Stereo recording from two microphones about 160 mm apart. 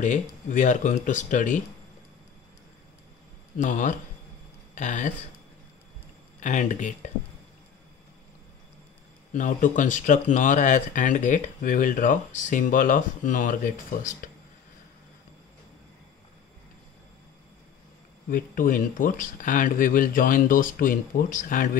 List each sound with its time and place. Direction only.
0.0 s speech: 50° left (ahead or behind)
3.5 s speech: 50° left (ahead or behind)
6.4 s speech: 50° left (ahead or behind)
9.3 s speech: 55° left (ahead or behind)
18.3 s speech: 60° left (ahead or behind)